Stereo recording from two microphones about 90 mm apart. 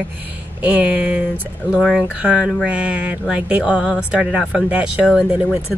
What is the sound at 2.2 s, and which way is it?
Speech, 10° right (ahead or behind).